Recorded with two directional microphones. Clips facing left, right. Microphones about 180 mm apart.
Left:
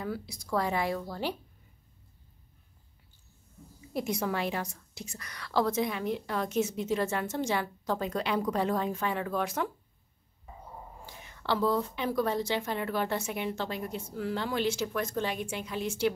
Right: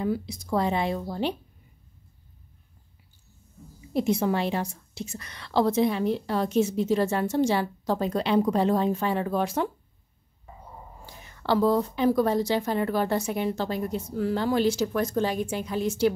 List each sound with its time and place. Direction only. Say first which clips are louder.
0.0 s a woman's voice: right 8 dB; 20° right (ahead or behind)
3.9 s a woman's voice: right 7 dB; 25° right (ahead or behind)
11.2 s a woman's voice: right 6 dB; 40° right (ahead or behind)